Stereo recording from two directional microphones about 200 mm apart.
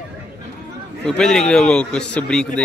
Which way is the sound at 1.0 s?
5° left (ahead or behind).